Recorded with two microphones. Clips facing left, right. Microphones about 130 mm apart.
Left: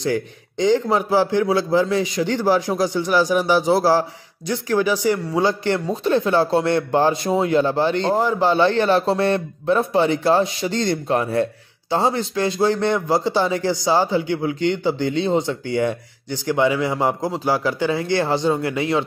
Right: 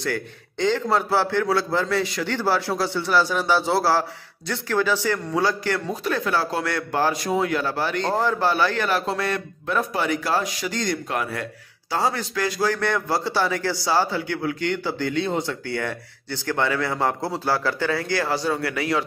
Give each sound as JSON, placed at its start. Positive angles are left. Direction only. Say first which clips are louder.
{"t": 0.0, "sound": "a man's voice", "louder": "left 5 dB", "side_deg": 15}